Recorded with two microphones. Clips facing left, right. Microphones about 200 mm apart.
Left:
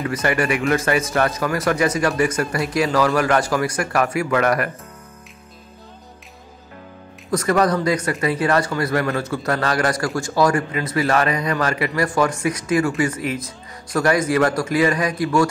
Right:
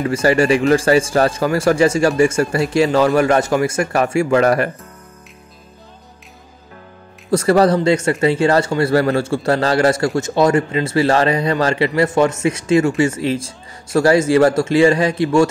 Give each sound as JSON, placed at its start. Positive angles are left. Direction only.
{"t": 0.0, "sound": "speech", "side_deg": -30}
{"t": 7.2, "sound": "speech", "side_deg": -30}